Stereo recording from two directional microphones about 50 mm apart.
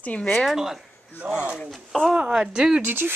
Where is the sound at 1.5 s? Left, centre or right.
Centre.